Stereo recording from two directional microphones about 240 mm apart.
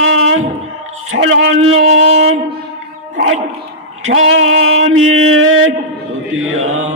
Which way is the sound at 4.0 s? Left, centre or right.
Right.